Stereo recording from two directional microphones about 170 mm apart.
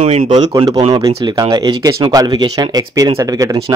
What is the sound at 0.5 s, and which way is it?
Speech, 25° right (ahead or behind).